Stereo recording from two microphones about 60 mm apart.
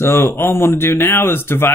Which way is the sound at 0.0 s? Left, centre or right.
Left.